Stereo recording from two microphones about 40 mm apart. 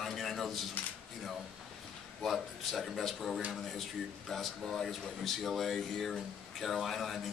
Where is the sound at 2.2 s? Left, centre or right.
Centre.